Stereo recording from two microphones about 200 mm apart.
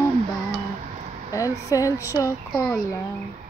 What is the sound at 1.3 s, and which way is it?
Speech, 15° left (ahead or behind).